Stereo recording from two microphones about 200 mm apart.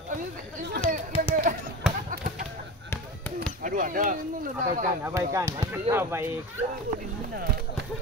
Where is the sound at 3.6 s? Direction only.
45° right (ahead or behind).